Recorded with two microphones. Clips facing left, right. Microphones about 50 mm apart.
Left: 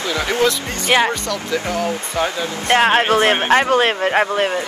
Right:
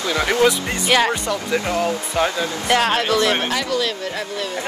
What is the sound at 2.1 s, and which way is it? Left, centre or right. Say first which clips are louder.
Speech: right 1 dB; left.